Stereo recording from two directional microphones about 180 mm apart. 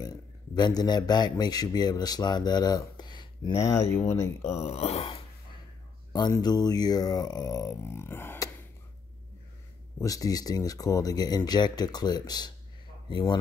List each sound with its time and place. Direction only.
0.0 s speech: 20° left (ahead or behind)
4.6 s speech: 35° left (ahead or behind); by 8.5 s 10° left (ahead or behind)
9.9 s speech: 20° left (ahead or behind)